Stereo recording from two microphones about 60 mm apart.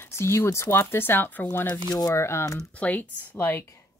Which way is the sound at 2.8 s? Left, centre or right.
Left.